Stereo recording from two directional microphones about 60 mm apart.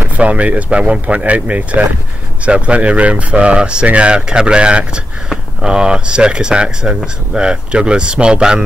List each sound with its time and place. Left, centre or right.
0.2 s speech: right